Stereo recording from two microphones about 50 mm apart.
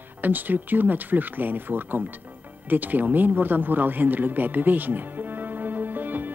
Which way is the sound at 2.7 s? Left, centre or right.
Right.